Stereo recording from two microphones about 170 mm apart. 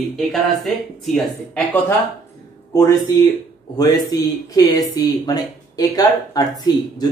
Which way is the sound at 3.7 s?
20° left (ahead or behind).